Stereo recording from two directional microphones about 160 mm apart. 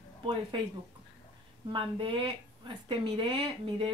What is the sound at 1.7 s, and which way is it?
A woman's voice, 30° right (ahead or behind).